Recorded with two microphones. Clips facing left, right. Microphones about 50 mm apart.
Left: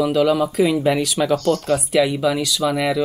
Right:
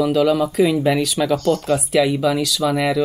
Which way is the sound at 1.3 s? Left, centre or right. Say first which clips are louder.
Even; centre.